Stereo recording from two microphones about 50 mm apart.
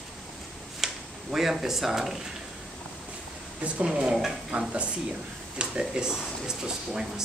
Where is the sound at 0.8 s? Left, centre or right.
Centre.